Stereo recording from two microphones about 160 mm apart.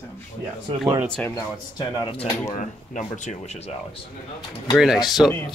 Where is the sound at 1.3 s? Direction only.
30° left (ahead or behind).